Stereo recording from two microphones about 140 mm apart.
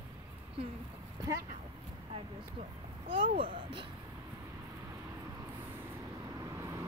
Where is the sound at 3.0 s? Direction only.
40° right (ahead or behind).